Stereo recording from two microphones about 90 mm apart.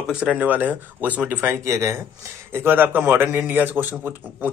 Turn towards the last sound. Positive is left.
turn(degrees=-20)  # may be behind; listen again after turning